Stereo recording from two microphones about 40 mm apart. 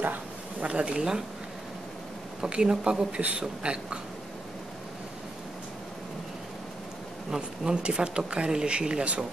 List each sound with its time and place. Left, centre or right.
0.0 s a sound: right
0.7 s speech: right
2.4 s speech: right
7.2 s speech: centre